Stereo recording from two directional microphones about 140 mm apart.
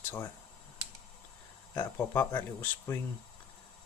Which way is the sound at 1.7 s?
20° left (ahead or behind).